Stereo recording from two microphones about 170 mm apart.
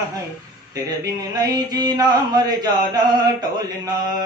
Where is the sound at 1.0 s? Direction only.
20° right (ahead or behind).